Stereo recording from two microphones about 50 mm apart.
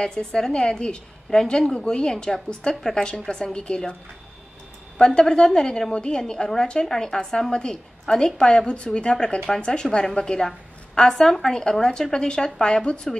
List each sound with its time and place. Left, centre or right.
0.0 s a woman's voice: centre
4.9 s a woman's voice: centre